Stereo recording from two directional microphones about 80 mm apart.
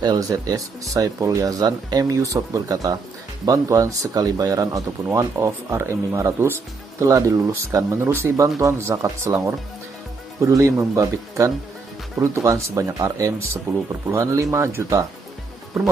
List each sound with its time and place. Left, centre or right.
0.0 s speech: right
5.1 s speech: right